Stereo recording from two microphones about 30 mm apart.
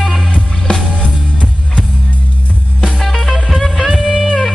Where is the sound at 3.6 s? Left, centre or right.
Centre.